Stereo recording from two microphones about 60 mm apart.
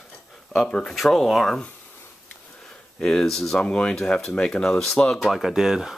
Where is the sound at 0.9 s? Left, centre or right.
Centre.